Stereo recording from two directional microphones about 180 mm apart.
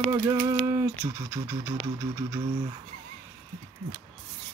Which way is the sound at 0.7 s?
15° right (ahead or behind).